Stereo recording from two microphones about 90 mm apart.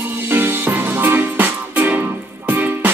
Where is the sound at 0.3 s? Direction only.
25° right (ahead or behind).